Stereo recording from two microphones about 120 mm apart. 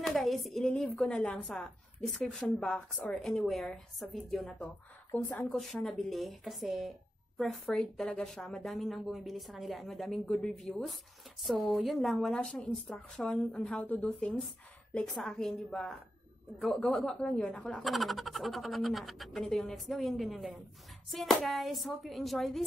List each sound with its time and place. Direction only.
0.0 s speech: centre (ahead or behind)
5.1 s a woman's voice: 15° left (ahead or behind)
5.6 s a woman's voice: centre (ahead or behind)